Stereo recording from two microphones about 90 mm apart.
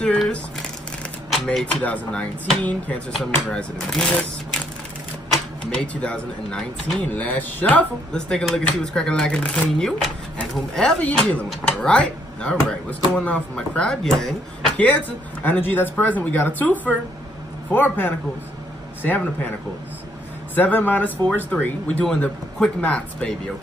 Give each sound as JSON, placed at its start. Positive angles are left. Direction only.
{"t": 1.3, "sound": "speech", "side_deg": 5}
{"t": 14.8, "sound": "speech", "side_deg": 15}
{"t": 20.5, "sound": "speech", "side_deg": 20}